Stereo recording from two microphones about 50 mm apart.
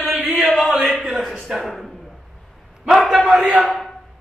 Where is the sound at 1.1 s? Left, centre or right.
Centre.